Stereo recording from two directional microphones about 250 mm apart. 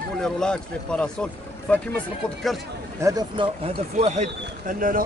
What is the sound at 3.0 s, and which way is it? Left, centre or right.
Speech, centre.